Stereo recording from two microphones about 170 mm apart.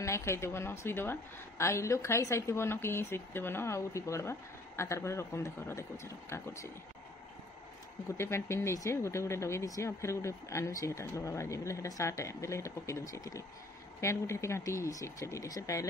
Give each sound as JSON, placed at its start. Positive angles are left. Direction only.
{"t": 0.0, "sound": "speech", "side_deg": 15}
{"t": 8.2, "sound": "speech", "side_deg": 15}